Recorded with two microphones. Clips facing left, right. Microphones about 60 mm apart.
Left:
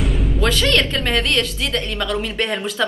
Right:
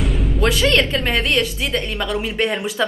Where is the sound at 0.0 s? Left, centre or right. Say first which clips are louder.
Right 1 dB; centre.